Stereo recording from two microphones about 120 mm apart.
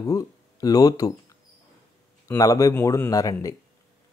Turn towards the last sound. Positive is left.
turn(degrees=30)  # may be behind; listen again after turning